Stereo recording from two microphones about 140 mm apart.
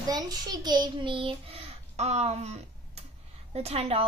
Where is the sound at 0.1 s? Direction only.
30° right (ahead or behind).